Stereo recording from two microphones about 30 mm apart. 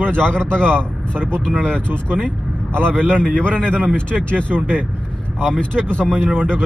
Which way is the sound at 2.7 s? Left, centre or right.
Left.